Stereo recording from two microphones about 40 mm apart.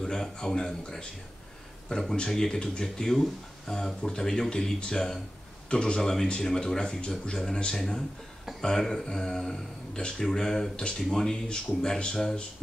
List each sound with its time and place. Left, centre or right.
0.0 s speech: centre
1.9 s speech: centre
7.7 s speech: centre
11.4 s speech: left